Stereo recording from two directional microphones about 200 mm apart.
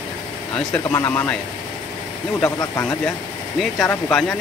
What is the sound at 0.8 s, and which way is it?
Speech, 10° left (ahead or behind).